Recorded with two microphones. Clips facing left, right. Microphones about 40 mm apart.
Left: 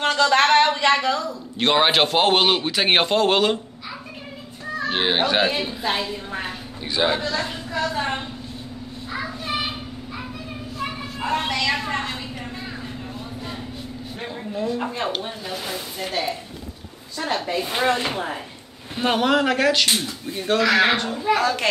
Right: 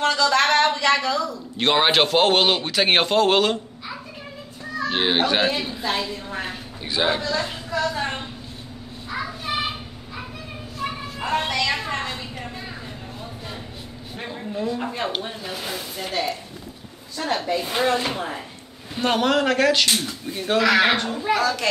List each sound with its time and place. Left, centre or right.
0.0 s a sound: left
1.6 s a man's voice: centre
4.9 s a man's voice: centre
7.2 s a woman's voice: centre
10.8 s a woman's voice: centre
14.2 s a man's voice: centre
17.2 s speech: left
17.6 s speech: centre
17.8 s speech: left
18.1 s a man's voice: centre
21.4 s a child's voice: left